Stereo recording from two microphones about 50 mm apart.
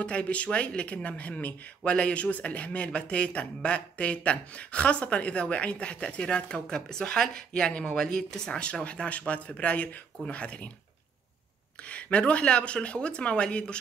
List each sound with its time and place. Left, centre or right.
0.0 s speech: left
11.9 s speech: left